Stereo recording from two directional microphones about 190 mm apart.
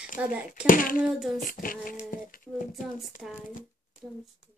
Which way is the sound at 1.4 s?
45° left (ahead or behind).